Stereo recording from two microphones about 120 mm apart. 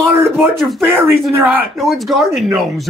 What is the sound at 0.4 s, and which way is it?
Speech, centre (ahead or behind).